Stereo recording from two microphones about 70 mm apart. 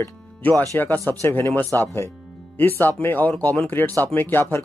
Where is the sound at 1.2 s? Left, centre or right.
Left.